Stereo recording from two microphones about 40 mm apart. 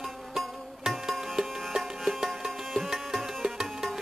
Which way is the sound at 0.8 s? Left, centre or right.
Centre.